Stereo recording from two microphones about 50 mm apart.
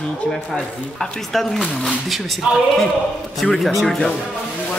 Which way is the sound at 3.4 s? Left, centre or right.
Centre.